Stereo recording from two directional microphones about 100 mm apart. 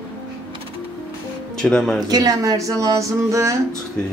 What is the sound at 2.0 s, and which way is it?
A woman's voice, 40° right (ahead or behind).